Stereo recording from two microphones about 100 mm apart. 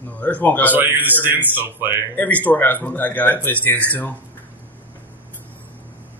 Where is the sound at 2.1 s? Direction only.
15° left (ahead or behind).